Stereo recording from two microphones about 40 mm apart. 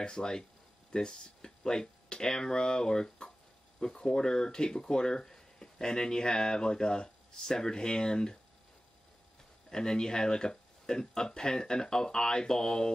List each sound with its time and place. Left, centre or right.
0.0 s speech: centre
9.7 s speech: centre